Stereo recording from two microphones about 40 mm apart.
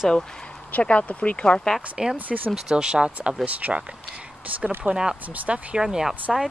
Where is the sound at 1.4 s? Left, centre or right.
Centre.